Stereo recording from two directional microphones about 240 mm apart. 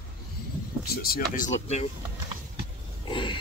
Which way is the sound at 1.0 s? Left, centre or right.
Left.